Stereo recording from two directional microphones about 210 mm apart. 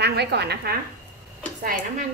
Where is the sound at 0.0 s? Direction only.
50° right (ahead or behind).